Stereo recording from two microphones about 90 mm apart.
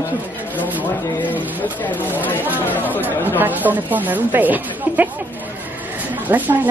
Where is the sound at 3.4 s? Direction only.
20° right (ahead or behind).